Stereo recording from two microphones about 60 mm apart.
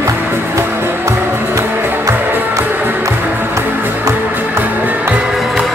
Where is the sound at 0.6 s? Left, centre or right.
Right.